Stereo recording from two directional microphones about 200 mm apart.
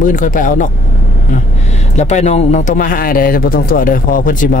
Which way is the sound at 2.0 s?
35° left (ahead or behind).